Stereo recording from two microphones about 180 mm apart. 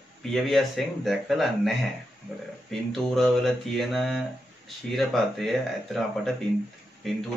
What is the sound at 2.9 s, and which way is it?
Speech, centre (ahead or behind).